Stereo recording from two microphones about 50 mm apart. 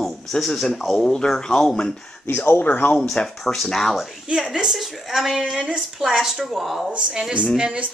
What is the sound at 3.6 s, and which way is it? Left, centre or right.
Speech, centre.